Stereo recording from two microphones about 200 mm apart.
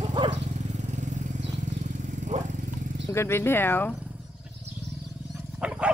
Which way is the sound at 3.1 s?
10° left (ahead or behind).